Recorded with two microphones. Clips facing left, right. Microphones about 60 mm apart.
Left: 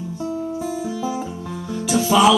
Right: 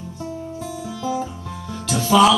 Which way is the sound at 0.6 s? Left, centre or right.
Centre.